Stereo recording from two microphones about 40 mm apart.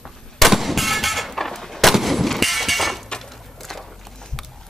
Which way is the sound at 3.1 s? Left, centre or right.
Centre.